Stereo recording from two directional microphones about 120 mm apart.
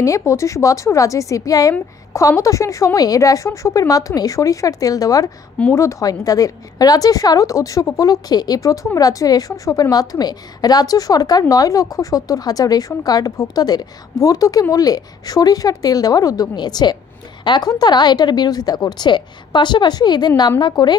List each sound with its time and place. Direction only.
0.0 s a woman's voice: 25° left (ahead or behind)